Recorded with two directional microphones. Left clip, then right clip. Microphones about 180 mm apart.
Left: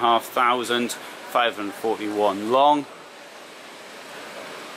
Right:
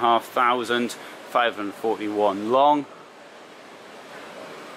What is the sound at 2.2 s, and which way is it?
Speech, 35° right (ahead or behind).